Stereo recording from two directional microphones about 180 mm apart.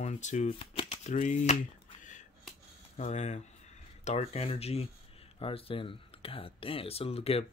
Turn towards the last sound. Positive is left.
turn(degrees=35)  # may be behind; listen again after turning